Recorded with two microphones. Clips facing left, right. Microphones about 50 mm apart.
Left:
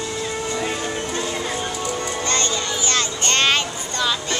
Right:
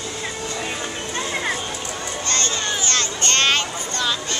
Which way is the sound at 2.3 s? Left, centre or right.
Centre.